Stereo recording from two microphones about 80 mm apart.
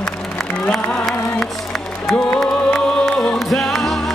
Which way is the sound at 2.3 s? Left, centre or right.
Centre.